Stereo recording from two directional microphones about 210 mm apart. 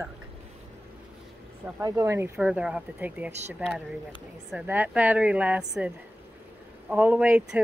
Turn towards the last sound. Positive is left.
turn(degrees=-5)  # may be behind; listen again after turning